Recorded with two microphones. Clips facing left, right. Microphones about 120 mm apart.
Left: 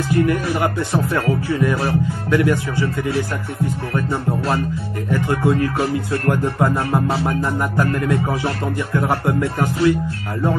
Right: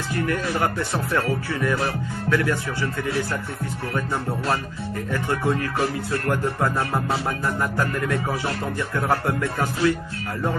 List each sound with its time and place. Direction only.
0.1 s speech: 20° left (ahead or behind)
5.1 s speech: 15° left (ahead or behind)
6.4 s music: 20° left (ahead or behind)
8.9 s speech: 15° left (ahead or behind)